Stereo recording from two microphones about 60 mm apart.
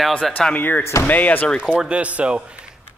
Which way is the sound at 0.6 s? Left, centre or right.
Left.